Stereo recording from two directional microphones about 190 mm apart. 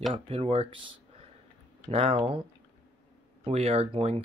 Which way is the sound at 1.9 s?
30° right (ahead or behind).